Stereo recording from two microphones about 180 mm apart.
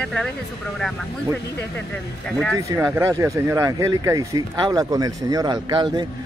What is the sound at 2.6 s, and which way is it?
A man's voice, 15° right (ahead or behind).